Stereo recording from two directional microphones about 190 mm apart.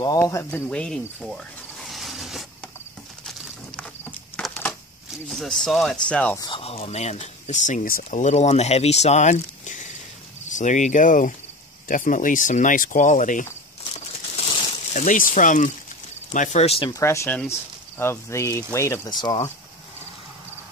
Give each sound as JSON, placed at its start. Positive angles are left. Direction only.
{"t": 0.0, "sound": "speech", "side_deg": 20}
{"t": 3.3, "sound": "a sound", "side_deg": 0}
{"t": 5.3, "sound": "speech", "side_deg": 0}
{"t": 6.3, "sound": "speech", "side_deg": 25}
{"t": 13.9, "sound": "crumpling", "side_deg": 30}
{"t": 15.0, "sound": "speech", "side_deg": 45}
{"t": 16.9, "sound": "speech", "side_deg": 15}